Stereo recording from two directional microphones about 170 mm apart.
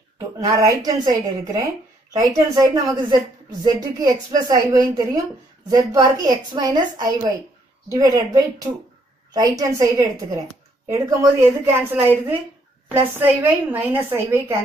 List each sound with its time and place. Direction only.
0.4 s a woman's voice: 20° right (ahead or behind)
13.2 s a woman's voice: 10° right (ahead or behind)